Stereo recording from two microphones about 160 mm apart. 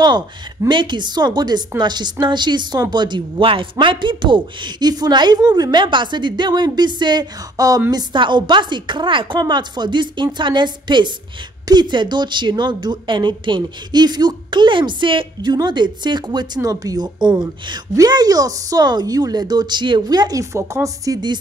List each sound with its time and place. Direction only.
0.0 s a woman's voice: 25° right (ahead or behind)